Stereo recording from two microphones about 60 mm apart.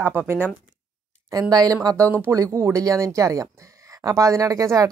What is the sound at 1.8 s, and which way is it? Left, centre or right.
Speech, right.